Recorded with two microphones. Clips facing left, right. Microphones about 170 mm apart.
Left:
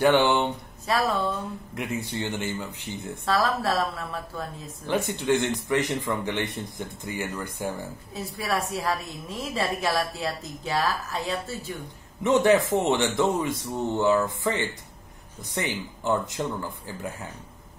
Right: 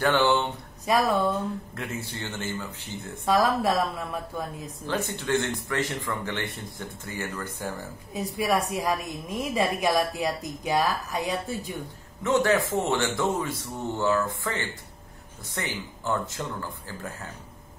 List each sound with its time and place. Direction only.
0.0 s speech: 15° left (ahead or behind)
0.9 s a woman's voice: 15° right (ahead or behind)
1.8 s speech: 15° left (ahead or behind)
3.3 s a woman's voice: 15° right (ahead or behind)
4.8 s speech: 15° left (ahead or behind)
8.1 s a woman's voice: 15° right (ahead or behind)
12.2 s a man's voice: 20° left (ahead or behind)